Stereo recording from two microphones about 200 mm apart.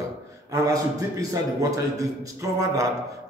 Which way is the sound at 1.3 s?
15° right (ahead or behind).